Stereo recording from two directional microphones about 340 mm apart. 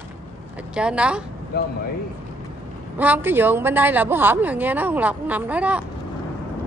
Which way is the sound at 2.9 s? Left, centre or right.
Centre.